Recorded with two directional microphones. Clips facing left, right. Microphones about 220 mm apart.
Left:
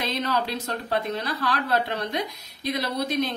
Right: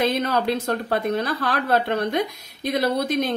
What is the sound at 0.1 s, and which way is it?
A woman's voice, 55° right (ahead or behind).